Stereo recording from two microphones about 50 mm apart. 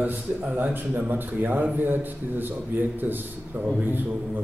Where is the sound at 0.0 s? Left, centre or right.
Right.